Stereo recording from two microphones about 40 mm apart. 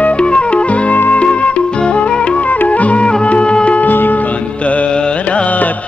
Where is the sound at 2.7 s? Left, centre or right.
Left.